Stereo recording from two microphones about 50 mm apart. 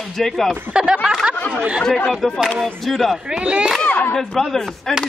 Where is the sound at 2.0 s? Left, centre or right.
Centre.